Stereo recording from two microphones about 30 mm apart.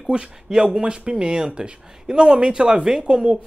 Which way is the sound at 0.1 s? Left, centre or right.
Right.